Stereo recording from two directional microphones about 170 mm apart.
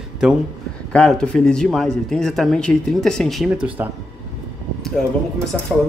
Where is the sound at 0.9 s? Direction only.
5° left (ahead or behind).